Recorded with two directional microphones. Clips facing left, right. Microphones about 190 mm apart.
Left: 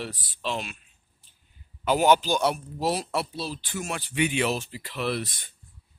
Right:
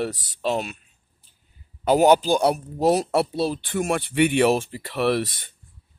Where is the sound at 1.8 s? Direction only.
40° right (ahead or behind); by 5.3 s 65° right (ahead or behind).